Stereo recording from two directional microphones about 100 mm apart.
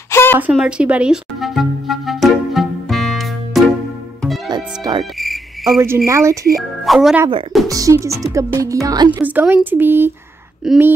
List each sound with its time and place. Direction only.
0.1 s a sound: 25° left (ahead or behind)
0.5 s music: 10° right (ahead or behind)
4.9 s insect: 45° right (ahead or behind)
5.2 s cricket: centre (ahead or behind)
6.0 s speech: 30° right (ahead or behind)
6.5 s speech: centre (ahead or behind)
7.6 s speech: 35° right (ahead or behind)
9.2 s speech: 15° right (ahead or behind)
10.6 s speech: 5° right (ahead or behind)